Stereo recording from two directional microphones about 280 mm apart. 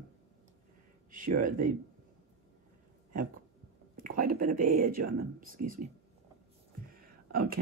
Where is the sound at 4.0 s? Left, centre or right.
Right.